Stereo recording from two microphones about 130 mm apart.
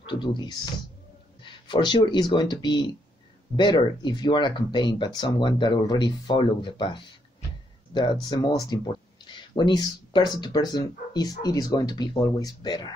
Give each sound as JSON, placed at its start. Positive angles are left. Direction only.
{"t": 0.0, "sound": "speech", "side_deg": 40}